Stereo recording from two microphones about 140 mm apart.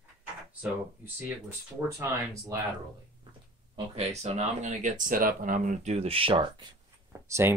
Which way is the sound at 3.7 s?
45° right (ahead or behind).